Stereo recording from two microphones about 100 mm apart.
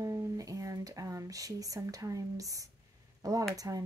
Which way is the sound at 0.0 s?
35° right (ahead or behind).